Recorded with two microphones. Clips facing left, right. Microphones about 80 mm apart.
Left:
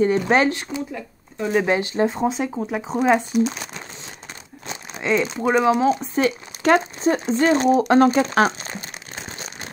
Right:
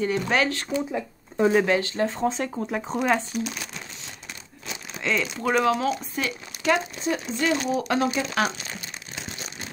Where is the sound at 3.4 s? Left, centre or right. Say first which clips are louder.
Left 7 dB; left.